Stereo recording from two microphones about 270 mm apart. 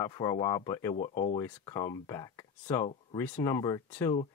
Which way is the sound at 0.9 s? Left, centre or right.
Left.